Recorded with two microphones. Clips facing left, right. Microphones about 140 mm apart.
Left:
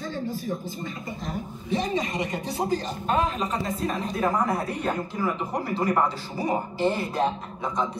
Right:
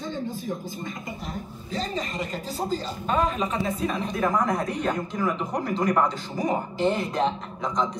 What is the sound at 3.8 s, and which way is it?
Speech, 35° left (ahead or behind).